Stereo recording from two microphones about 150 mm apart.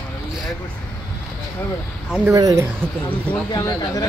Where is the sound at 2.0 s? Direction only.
5° right (ahead or behind).